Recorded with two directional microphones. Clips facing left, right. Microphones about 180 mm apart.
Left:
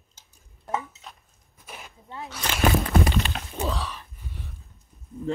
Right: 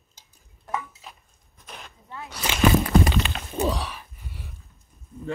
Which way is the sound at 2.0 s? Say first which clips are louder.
Left 2 dB; 20° left (ahead or behind).